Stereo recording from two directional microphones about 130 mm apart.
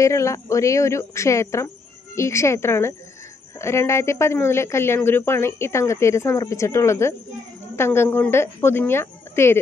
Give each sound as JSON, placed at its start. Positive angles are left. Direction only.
{"t": 0.0, "sound": "speech", "side_deg": 25}